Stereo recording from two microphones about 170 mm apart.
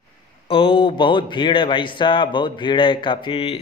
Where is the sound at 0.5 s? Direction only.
30° left (ahead or behind).